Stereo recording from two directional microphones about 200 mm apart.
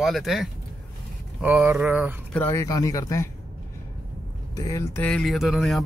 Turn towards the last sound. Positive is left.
turn(degrees=0)  # may be behind; listen again after turning